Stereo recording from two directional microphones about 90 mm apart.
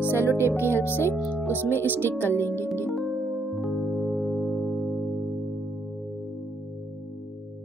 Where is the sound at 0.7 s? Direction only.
25° left (ahead or behind).